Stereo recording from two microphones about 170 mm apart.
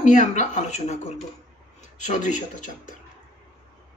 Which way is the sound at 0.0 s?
50° left (ahead or behind).